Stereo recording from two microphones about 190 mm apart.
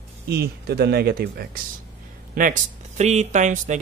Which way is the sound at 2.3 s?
45° right (ahead or behind).